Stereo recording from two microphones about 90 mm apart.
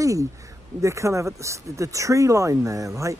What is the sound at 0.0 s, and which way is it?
Speech, 35° right (ahead or behind).